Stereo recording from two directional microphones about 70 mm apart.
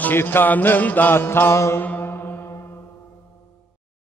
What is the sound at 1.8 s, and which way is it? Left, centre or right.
Mantra, left.